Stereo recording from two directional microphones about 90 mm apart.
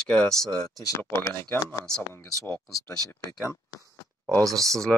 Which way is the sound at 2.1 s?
30° left (ahead or behind).